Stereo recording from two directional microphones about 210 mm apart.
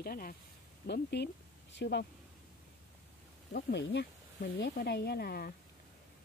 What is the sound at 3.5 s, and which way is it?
A woman's voice, 55° left (ahead or behind).